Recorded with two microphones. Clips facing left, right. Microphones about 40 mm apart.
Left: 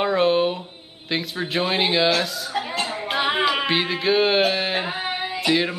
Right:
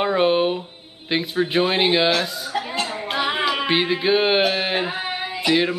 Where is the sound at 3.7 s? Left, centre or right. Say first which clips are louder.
Right 2 dB; centre.